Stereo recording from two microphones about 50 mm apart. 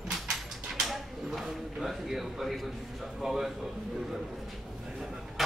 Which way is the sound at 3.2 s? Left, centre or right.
Centre.